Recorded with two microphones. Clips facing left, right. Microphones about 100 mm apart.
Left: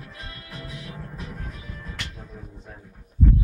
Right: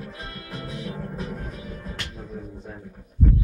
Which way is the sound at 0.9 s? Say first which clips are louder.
Right 5 dB; 25° right (ahead or behind).